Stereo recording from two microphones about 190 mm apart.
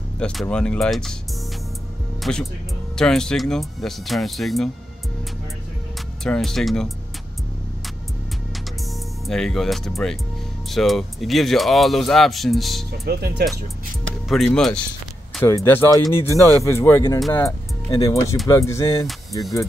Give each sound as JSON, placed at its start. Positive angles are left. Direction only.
{"t": 0.2, "sound": "speech", "side_deg": 5}
{"t": 2.3, "sound": "speech", "side_deg": 0}
{"t": 6.2, "sound": "speech", "side_deg": 0}
{"t": 9.2, "sound": "speech", "side_deg": 0}
{"t": 12.9, "sound": "speech", "side_deg": -55}
{"t": 14.3, "sound": "speech", "side_deg": 0}
{"t": 16.0, "sound": "speech", "side_deg": -20}
{"t": 16.6, "sound": "speech", "side_deg": 10}